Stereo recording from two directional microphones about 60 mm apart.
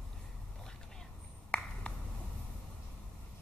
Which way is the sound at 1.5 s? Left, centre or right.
Centre.